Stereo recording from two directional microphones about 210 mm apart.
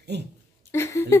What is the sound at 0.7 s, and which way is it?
Speech, 10° left (ahead or behind).